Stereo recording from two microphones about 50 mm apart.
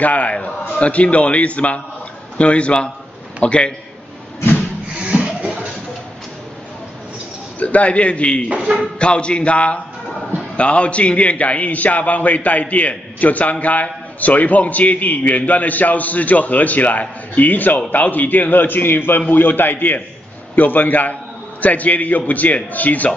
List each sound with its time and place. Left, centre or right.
0.0 s a man's voice: left
5.0 s music: right
7.5 s a man's voice: left